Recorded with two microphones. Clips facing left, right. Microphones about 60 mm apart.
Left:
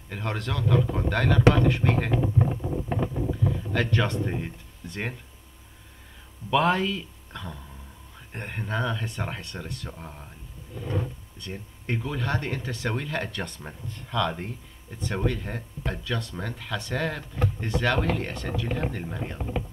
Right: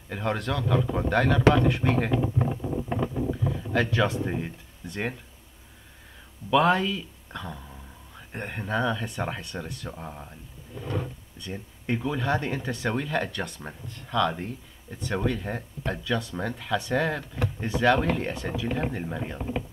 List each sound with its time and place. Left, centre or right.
0.1 s speech: centre
2.1 s boat: centre
3.2 s a sound: centre
6.5 s speech: centre